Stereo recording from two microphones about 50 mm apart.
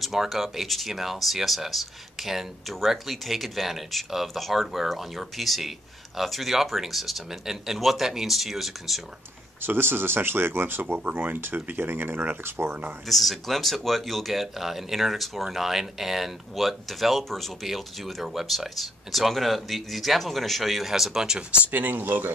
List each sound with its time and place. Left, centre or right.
0.0 s speech: centre
9.6 s speech: right
13.0 s speech: centre
21.6 s speech: right